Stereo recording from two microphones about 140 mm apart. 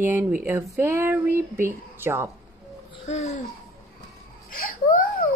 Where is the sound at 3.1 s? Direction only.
55° left (ahead or behind).